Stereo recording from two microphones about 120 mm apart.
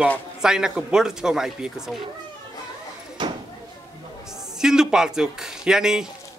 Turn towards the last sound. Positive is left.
turn(degrees=-5)  # may be behind; listen again after turning